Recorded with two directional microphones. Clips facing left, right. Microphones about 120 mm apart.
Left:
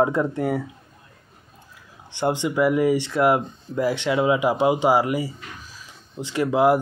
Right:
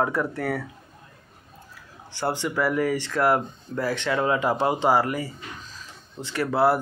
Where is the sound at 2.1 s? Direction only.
20° left (ahead or behind).